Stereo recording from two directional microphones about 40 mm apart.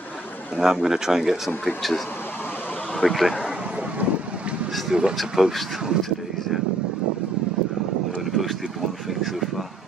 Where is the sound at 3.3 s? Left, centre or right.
Right.